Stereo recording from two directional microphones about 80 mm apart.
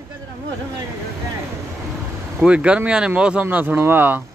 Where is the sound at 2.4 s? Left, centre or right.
Centre.